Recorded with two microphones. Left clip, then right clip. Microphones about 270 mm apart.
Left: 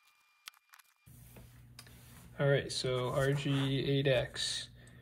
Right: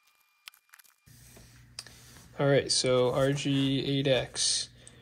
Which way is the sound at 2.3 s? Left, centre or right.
Centre.